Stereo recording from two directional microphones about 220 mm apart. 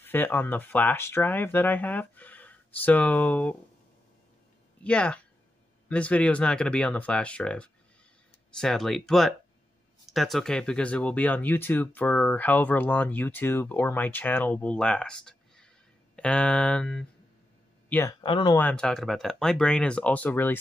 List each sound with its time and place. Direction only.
0.0 s speech: 10° left (ahead or behind)
4.8 s speech: 5° left (ahead or behind)
18.2 s speech: 20° left (ahead or behind)
18.6 s speech: 5° left (ahead or behind)